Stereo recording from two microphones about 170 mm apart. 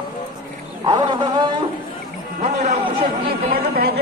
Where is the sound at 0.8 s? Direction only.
25° right (ahead or behind).